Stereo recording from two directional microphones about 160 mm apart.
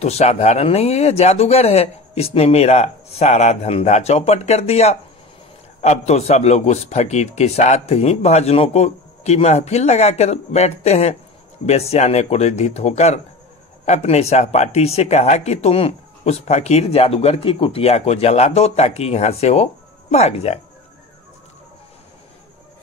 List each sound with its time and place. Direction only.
0.0 s a man's voice: 45° left (ahead or behind)